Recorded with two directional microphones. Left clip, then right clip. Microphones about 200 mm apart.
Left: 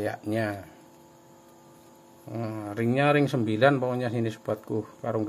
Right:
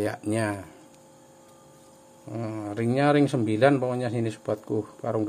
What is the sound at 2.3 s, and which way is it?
Speech, 5° right (ahead or behind).